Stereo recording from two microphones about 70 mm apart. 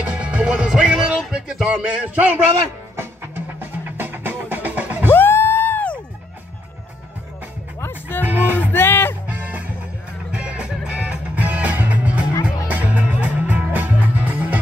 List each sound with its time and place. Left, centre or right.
0.0 s music: centre
5.1 s music: left
8.2 s music: right
8.7 s music: left
9.3 s music: right
11.4 s music: right